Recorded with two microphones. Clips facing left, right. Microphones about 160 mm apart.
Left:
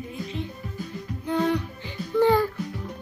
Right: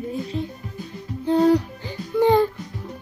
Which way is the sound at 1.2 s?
35° right (ahead or behind).